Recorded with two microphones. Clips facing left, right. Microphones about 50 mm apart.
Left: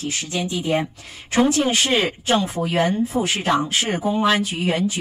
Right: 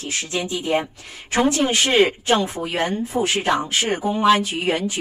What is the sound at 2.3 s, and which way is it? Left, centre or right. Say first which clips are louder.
Speech: left 5 dB; centre.